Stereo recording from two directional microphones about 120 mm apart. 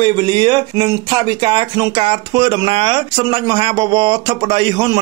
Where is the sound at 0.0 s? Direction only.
40° right (ahead or behind).